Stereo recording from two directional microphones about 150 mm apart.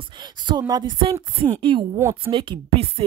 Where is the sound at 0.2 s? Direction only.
30° right (ahead or behind).